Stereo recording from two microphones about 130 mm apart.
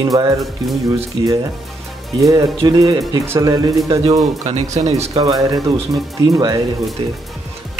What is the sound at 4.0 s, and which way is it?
Speech, 50° right (ahead or behind).